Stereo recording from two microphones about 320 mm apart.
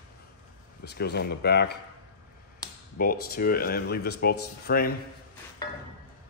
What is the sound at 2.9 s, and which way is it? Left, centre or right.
Speech, left.